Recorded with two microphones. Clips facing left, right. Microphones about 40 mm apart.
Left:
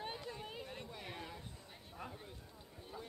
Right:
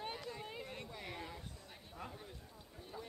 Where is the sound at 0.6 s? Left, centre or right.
Right.